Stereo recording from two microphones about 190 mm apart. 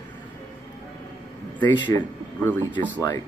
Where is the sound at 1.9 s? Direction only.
15° left (ahead or behind).